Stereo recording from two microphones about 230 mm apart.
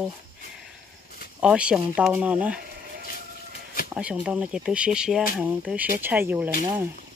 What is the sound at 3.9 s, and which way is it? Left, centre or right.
Speech, centre.